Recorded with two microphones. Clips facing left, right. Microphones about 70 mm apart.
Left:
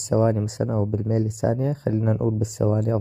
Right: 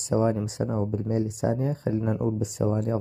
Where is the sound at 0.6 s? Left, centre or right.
Left.